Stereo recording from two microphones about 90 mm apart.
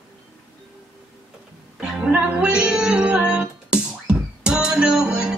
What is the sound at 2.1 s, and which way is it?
Female singing, 15° right (ahead or behind).